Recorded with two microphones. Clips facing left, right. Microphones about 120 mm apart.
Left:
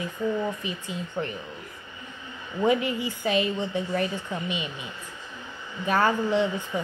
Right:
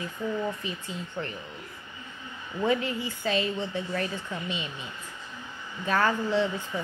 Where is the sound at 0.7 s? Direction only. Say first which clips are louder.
Left 3 dB; 15° left (ahead or behind).